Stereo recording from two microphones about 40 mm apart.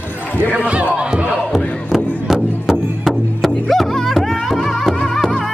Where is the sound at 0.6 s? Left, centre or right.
Right.